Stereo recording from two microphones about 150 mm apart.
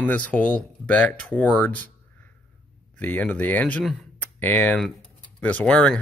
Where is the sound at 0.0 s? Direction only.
10° left (ahead or behind).